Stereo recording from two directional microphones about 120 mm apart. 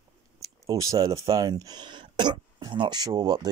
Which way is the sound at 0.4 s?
30° right (ahead or behind).